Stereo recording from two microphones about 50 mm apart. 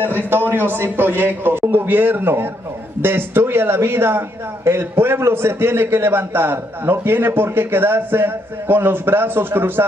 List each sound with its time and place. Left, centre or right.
0.0 s a man's voice: right